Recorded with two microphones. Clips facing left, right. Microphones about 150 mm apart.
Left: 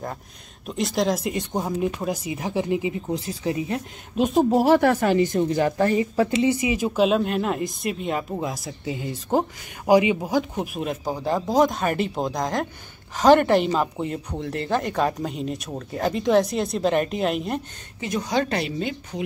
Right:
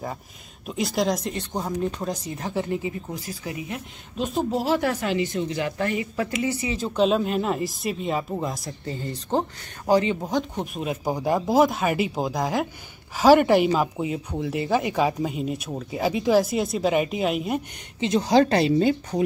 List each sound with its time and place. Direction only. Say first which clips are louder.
0.7 s speech: left 1 dB; centre (ahead or behind)
1.3 s speech: left 2 dB; 15° left (ahead or behind)
7.0 s speech: right 1 dB; centre (ahead or behind)
11.1 s speech: right 3 dB; 10° right (ahead or behind)
18.0 s speech: right 5 dB; 25° right (ahead or behind)